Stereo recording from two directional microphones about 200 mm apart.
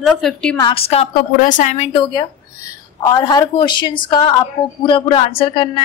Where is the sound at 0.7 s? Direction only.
30° left (ahead or behind).